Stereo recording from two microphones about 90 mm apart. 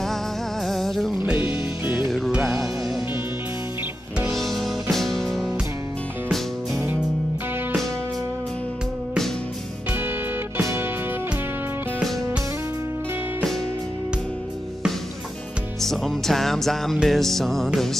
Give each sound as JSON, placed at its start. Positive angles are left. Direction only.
{"t": 0.7, "sound": "music", "side_deg": 5}
{"t": 4.3, "sound": "music", "side_deg": 0}
{"t": 10.6, "sound": "music", "side_deg": -30}
{"t": 15.8, "sound": "music", "side_deg": 5}